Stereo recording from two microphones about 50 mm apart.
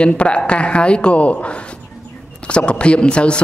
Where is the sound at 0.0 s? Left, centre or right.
Left.